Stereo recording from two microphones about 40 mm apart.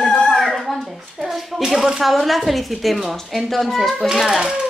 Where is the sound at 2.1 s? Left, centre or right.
Centre.